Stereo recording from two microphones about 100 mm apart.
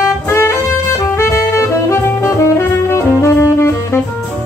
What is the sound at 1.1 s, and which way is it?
Music, 25° left (ahead or behind).